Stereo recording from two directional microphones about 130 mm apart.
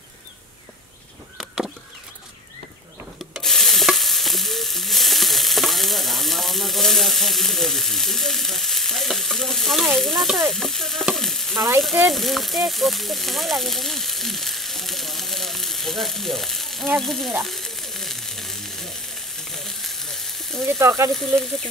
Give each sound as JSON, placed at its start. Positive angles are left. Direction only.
{"t": 1.4, "sound": "a sound", "side_deg": -5}
{"t": 3.3, "sound": "stir", "side_deg": 5}
{"t": 10.4, "sound": "frying", "side_deg": 0}
{"t": 11.5, "sound": "frying", "side_deg": -25}
{"t": 11.8, "sound": "speech", "side_deg": 0}
{"t": 17.4, "sound": "frying", "side_deg": 0}
{"t": 20.6, "sound": "speech", "side_deg": -25}